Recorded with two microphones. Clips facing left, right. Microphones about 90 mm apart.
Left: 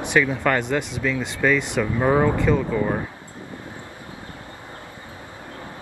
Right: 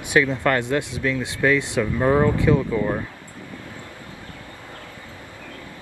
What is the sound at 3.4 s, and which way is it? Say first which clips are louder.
Vehicle: left 1 dB; 25° left (ahead or behind).